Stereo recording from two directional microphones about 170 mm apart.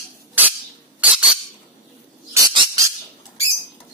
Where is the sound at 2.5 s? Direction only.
25° right (ahead or behind).